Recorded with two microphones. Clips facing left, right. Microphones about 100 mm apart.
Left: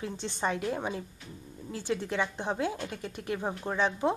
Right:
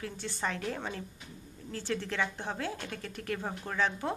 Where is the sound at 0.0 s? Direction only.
20° left (ahead or behind).